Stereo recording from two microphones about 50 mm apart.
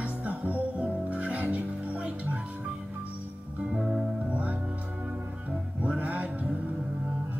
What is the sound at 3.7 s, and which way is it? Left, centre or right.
Music, centre.